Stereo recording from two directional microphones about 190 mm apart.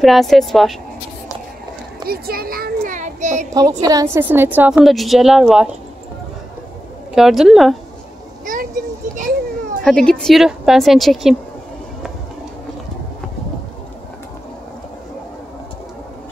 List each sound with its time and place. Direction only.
0.0 s a woman's voice: centre (ahead or behind)
2.0 s a child's voice: 55° right (ahead or behind)
3.8 s a woman's voice: 15° right (ahead or behind)
7.2 s a woman's voice: centre (ahead or behind)
9.8 s a woman's voice: 5° left (ahead or behind)